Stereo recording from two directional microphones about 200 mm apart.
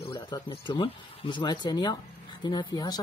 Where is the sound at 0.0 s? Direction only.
20° left (ahead or behind).